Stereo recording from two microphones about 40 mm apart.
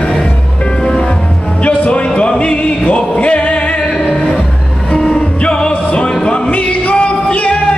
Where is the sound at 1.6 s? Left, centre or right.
Left.